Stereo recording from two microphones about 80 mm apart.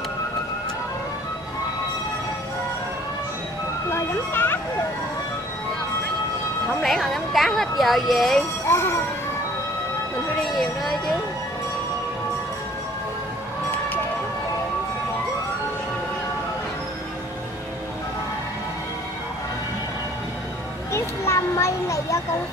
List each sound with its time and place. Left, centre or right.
3.9 s speech: left
6.8 s a woman's voice: centre
8.6 s speech: left
10.4 s a woman's voice: centre
20.9 s a sound: left